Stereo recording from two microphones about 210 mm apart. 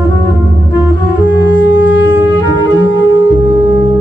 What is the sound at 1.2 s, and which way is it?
Music, 60° left (ahead or behind).